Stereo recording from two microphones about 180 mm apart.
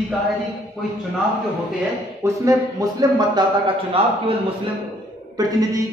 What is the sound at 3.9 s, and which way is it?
Speech, 30° right (ahead or behind).